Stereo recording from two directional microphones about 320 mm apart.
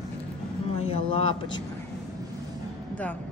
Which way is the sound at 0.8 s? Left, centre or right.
Centre.